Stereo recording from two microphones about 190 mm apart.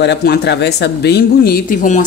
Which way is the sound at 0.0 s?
60° left (ahead or behind).